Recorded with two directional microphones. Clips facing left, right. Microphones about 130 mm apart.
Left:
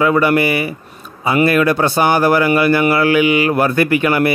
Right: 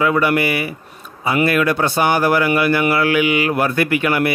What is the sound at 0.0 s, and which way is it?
Speech, 35° left (ahead or behind).